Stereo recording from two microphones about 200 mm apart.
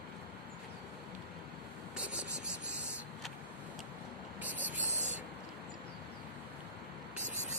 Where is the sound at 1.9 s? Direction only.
5° right (ahead or behind).